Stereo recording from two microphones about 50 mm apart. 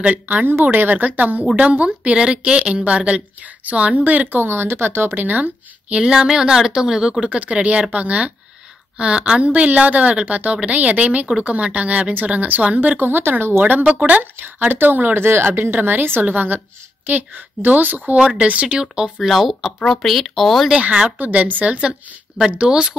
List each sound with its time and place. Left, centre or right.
0.0 s a woman's voice: right
0.5 s a woman's voice: right
6.1 s a woman's voice: centre
7.2 s a woman's voice: right
13.0 s speech: right
13.8 s a woman's voice: right
14.7 s speech: right
18.1 s a woman's voice: right
18.8 s a woman's voice: centre
19.2 s speech: centre
20.8 s a woman's voice: centre
21.2 s a woman's voice: right
22.6 s a woman's voice: centre